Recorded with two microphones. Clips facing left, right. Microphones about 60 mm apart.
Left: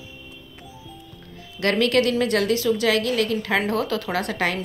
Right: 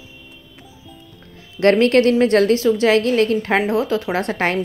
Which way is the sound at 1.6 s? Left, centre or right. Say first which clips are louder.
Right 6 dB; right.